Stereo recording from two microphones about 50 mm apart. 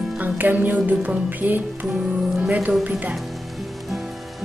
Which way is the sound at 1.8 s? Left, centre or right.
Centre.